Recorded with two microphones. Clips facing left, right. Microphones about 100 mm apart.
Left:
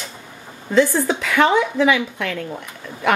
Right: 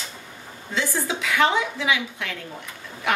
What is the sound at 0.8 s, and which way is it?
A woman's voice, 55° left (ahead or behind).